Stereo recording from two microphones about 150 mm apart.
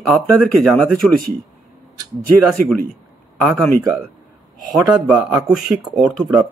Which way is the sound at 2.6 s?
70° right (ahead or behind).